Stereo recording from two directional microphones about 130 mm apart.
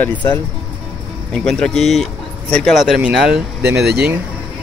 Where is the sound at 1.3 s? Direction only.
5° left (ahead or behind).